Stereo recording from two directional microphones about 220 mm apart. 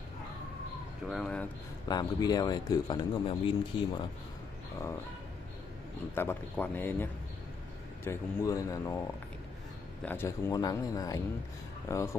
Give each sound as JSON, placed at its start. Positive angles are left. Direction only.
{"t": 1.0, "sound": "speech", "side_deg": 5}
{"t": 1.9, "sound": "speech", "side_deg": 20}
{"t": 6.1, "sound": "a man's voice", "side_deg": 10}
{"t": 10.0, "sound": "a man's voice", "side_deg": 10}